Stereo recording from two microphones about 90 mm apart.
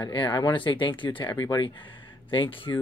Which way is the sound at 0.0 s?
60° left (ahead or behind).